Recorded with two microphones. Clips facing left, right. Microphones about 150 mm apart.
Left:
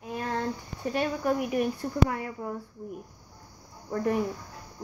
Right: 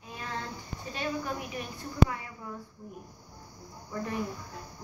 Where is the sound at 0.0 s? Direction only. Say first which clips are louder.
Left 7 dB; 50° left (ahead or behind).